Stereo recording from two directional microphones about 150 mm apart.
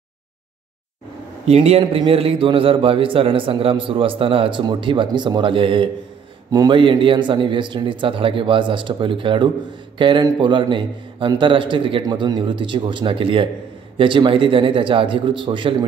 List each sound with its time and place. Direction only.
1.4 s a man's voice: 45° right (ahead or behind)